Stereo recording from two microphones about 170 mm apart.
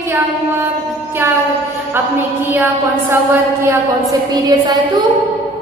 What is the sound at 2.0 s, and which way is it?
A woman's voice, 10° right (ahead or behind).